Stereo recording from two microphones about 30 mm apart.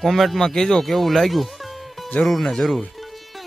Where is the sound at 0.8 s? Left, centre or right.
Centre.